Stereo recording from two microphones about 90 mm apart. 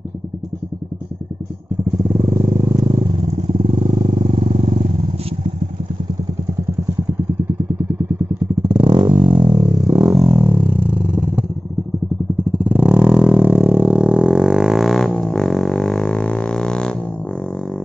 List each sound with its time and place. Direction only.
2.0 s vehicle: 40° right (ahead or behind); by 3.9 s 85° right
3.9 s vehicle: 65° right (ahead or behind)
8.6 s vehicle: 60° right (ahead or behind)
9.8 s a sound: 35° right (ahead or behind)
10.4 s a sound: 15° right (ahead or behind)
12.5 s vehicle: 15° right (ahead or behind); by 16.9 s 10° left (ahead or behind)